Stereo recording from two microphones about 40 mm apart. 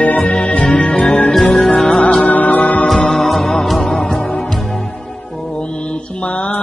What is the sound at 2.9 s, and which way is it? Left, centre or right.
Music, centre.